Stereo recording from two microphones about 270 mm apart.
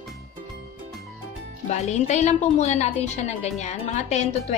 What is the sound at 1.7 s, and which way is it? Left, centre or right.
A woman's voice, left.